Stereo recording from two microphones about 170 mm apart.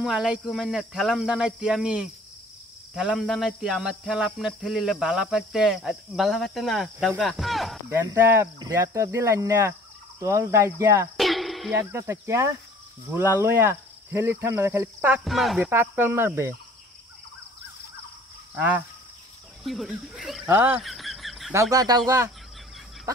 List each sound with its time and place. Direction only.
0.0 s cricket: 5° right (ahead or behind)
7.9 s speech: 15° right (ahead or behind)
11.1 s a sound: centre (ahead or behind)
11.7 s speech: 15° right (ahead or behind)
18.5 s speech: 10° right (ahead or behind)
19.6 s cricket: centre (ahead or behind)
20.4 s speech: 10° right (ahead or behind)
20.8 s a sound: centre (ahead or behind)
21.5 s speech: 20° right (ahead or behind)